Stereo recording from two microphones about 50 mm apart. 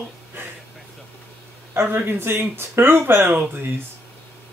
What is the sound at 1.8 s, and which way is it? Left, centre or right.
Speech, right.